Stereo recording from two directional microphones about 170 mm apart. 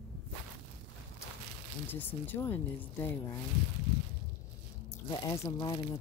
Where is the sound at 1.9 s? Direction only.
10° left (ahead or behind).